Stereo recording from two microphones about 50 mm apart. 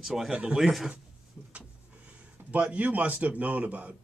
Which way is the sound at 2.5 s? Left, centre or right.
Right.